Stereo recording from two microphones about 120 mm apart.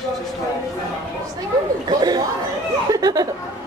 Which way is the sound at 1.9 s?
35° right (ahead or behind).